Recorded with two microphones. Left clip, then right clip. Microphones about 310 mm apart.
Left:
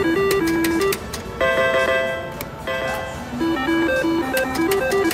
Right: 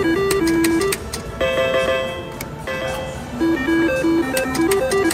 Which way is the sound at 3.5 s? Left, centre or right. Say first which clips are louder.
Right 1 dB; centre.